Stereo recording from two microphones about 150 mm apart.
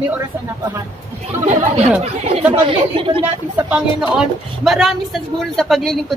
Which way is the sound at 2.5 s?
40° right (ahead or behind).